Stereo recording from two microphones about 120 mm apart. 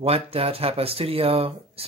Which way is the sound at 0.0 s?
55° right (ahead or behind).